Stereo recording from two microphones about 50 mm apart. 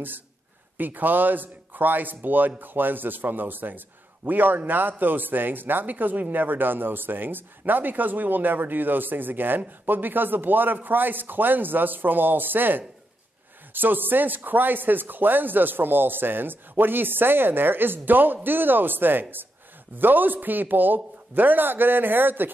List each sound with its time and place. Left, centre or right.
0.7 s a man's voice: right